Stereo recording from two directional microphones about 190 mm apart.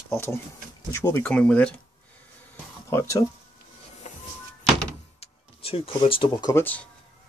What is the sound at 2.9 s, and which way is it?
Speech, 15° left (ahead or behind).